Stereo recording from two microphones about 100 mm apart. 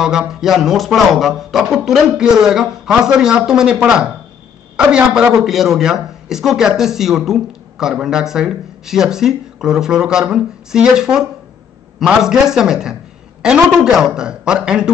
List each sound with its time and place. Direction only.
0.0 s a man's voice: 5° right (ahead or behind)